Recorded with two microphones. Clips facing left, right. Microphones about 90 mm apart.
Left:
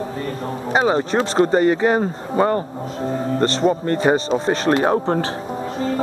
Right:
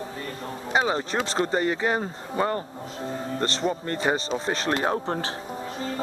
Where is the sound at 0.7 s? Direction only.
40° left (ahead or behind).